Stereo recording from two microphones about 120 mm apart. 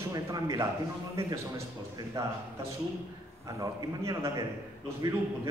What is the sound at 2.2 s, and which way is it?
Speech, 25° right (ahead or behind).